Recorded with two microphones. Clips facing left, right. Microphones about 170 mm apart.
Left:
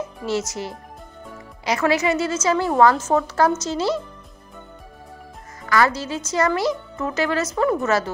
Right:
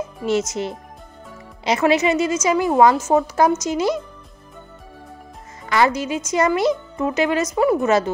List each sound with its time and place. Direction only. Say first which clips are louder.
0.2 s a child's voice: right 5 dB; 20° right (ahead or behind)
5.7 s a woman's voice: right 2 dB; 20° right (ahead or behind)